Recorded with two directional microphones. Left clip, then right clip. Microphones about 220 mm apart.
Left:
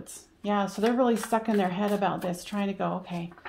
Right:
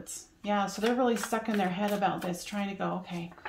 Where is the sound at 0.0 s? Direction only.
35° left (ahead or behind).